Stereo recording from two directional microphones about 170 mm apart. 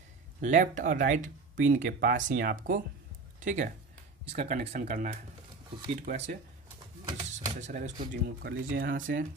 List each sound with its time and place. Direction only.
0.4 s speech: 50° right (ahead or behind)
7.4 s speech: 45° right (ahead or behind)
8.6 s speech: 65° right (ahead or behind)